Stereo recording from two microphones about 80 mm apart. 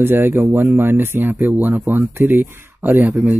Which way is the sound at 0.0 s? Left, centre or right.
Right.